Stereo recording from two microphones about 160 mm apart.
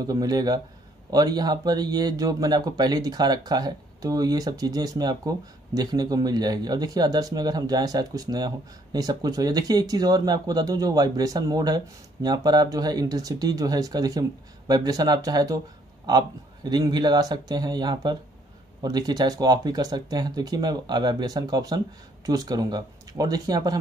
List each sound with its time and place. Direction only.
0.0 s speech: 25° right (ahead or behind)